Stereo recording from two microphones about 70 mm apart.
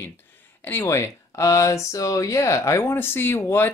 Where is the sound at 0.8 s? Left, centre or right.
Left.